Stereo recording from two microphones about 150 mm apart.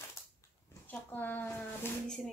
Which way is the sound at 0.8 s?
10° left (ahead or behind).